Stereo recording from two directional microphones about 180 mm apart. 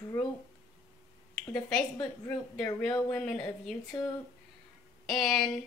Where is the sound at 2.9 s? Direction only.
20° left (ahead or behind).